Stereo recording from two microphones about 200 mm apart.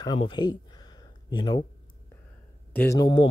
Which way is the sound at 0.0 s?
20° left (ahead or behind).